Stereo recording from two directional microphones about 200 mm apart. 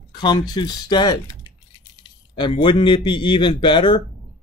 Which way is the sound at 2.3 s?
25° left (ahead or behind).